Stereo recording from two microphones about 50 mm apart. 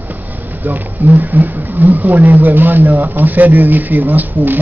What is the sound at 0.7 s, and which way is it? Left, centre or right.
Speech, right.